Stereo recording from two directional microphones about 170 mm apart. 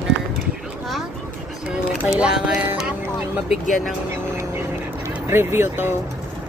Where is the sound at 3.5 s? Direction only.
50° left (ahead or behind).